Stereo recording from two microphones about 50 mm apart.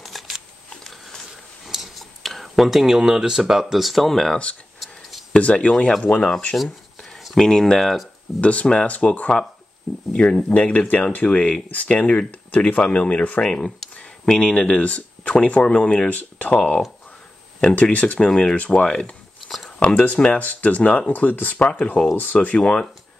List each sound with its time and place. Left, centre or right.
0.0 s a sound: centre
5.4 s speech: left
6.5 s speech: centre
8.4 s speech: left
11.2 s speech: centre
11.7 s speech: left
12.0 s speech: centre
16.1 s speech: left
17.9 s speech: left
18.3 s speech: centre
21.1 s speech: left
21.6 s speech: left
22.1 s speech: left
22.6 s speech: centre